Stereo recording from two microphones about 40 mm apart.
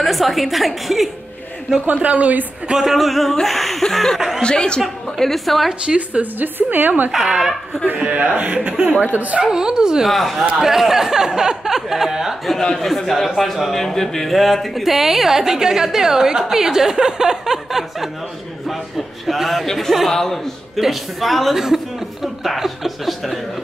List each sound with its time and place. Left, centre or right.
0.0 s speech: centre
1.9 s a man's voice: right
2.7 s a man's voice: centre
4.4 s speech: left
4.8 s speech: centre
5.9 s a woman's voice: centre
6.4 s a woman's voice: right
7.2 s a woman's voice: centre
7.8 s a man's voice: right
9.4 s a woman's voice: centre
10.0 s a woman's voice: centre
12.7 s a man's voice: centre
19.6 s a man's voice: centre
20.8 s speech: centre